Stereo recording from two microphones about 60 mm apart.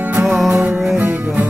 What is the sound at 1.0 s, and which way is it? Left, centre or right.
Music, right.